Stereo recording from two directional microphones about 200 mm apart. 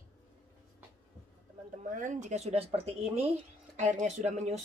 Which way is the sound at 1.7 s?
40° right (ahead or behind).